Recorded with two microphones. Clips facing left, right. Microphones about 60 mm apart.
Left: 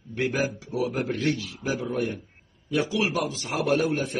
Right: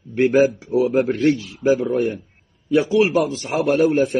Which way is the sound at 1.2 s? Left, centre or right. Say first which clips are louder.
Right 9 dB; right.